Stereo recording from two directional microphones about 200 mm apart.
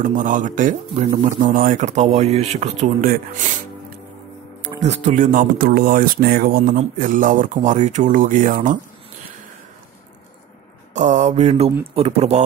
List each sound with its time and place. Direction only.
0.0 s speech: 40° right (ahead or behind)
4.8 s speech: 35° right (ahead or behind)
10.9 s speech: 35° right (ahead or behind)